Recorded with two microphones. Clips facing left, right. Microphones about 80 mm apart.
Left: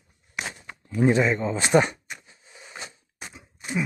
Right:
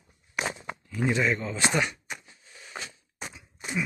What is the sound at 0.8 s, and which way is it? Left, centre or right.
Speech, left.